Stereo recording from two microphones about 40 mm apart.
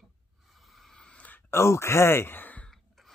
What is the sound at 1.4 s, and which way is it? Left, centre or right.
Speech, left.